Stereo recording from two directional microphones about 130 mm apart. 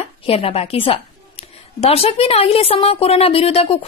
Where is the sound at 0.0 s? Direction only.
50° left (ahead or behind).